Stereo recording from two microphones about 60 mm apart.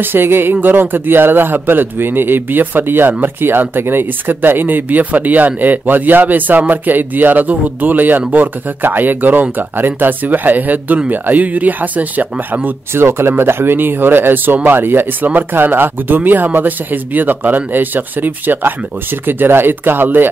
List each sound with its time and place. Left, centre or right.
0.0 s speech: right
12.9 s speech: right